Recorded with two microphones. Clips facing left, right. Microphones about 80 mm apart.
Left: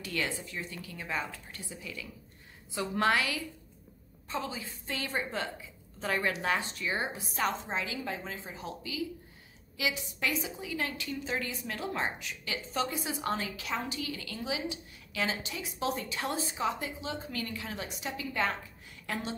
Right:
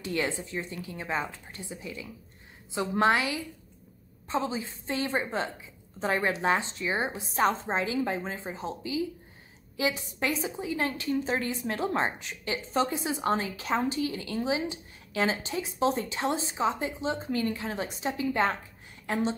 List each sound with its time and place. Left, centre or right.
0.0 s a woman's voice: right